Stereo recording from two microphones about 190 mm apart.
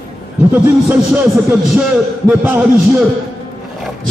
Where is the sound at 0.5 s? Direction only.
10° right (ahead or behind).